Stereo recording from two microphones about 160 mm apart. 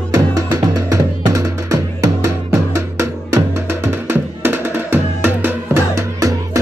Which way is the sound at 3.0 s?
15° right (ahead or behind).